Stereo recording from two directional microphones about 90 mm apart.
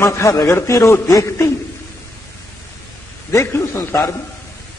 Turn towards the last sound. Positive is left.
turn(degrees=30)  # may be behind; listen again after turning